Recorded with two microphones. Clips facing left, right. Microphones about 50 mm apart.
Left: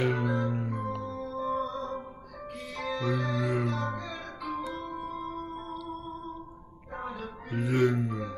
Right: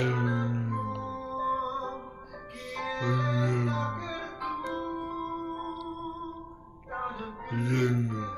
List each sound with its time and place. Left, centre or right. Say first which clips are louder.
0.0 s music: left 1 dB; centre
1.3 s music: right 2 dB; centre
2.7 s music: even; centre
7.1 s music: right 1 dB; centre